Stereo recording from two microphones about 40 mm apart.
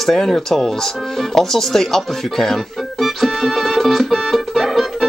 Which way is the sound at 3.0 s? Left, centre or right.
Centre.